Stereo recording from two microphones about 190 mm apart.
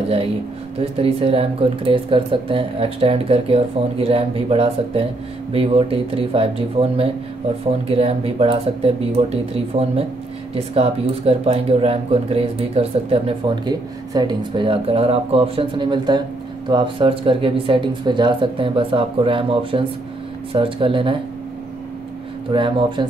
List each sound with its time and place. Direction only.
0.7 s speech: 30° right (ahead or behind)
22.5 s speech: 25° right (ahead or behind)